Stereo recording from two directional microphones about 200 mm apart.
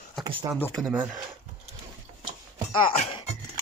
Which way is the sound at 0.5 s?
10° left (ahead or behind).